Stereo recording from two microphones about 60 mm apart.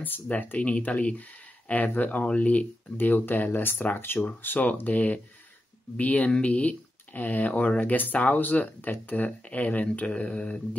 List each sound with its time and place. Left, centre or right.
0.0 s speech: left